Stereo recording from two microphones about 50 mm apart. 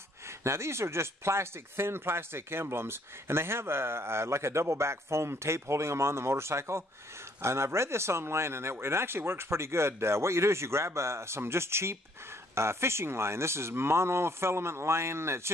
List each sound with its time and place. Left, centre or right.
0.3 s speech: right